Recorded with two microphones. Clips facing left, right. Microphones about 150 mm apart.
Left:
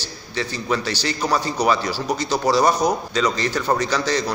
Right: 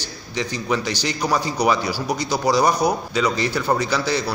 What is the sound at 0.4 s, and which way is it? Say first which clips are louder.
A man's voice: even; 15° right (ahead or behind).